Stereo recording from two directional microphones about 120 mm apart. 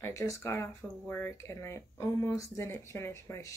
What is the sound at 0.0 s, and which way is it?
Speech, 25° left (ahead or behind).